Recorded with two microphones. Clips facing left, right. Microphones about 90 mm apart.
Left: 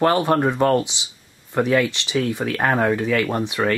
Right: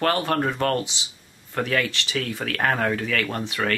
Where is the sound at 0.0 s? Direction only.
20° left (ahead or behind).